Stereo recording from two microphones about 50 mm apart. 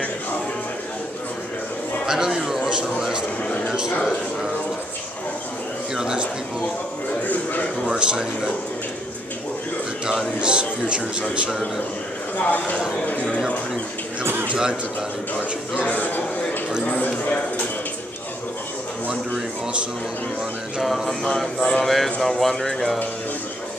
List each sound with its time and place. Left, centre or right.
2.0 s speech: centre
5.9 s speech: centre
7.9 s speech: centre
10.0 s speech: centre
12.4 s speech: left
14.5 s speech: centre
15.9 s a man's voice: left
20.8 s a sound: centre
21.5 s speech: centre
21.8 s a sound: centre
22.4 s speech: centre